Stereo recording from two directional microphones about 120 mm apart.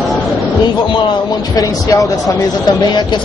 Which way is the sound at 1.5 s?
30° left (ahead or behind).